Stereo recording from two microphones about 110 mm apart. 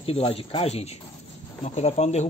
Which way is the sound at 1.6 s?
90° left.